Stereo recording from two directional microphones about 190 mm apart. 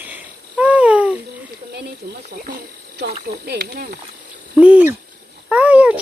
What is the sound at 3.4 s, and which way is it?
Speech, 60° right (ahead or behind).